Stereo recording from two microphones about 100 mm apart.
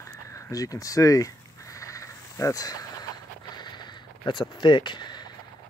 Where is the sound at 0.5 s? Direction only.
35° left (ahead or behind).